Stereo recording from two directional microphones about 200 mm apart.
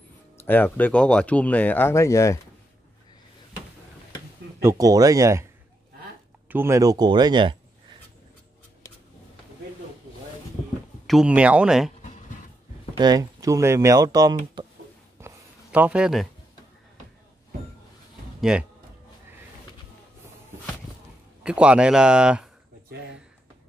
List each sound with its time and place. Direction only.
0.4 s speech: 10° left (ahead or behind)
4.6 s speech: 15° right (ahead or behind)
6.5 s speech: 15° right (ahead or behind)
11.1 s speech: 5° right (ahead or behind)
12.9 s speech: 20° right (ahead or behind)
15.1 s writing: 10° right (ahead or behind)
18.4 s speech: 5° right (ahead or behind)
21.4 s speech: 5° right (ahead or behind)